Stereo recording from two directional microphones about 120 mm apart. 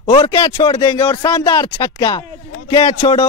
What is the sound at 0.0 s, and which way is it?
Speech, 45° left (ahead or behind).